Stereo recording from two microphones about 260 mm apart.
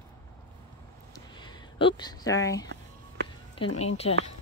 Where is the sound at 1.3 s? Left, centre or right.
Centre.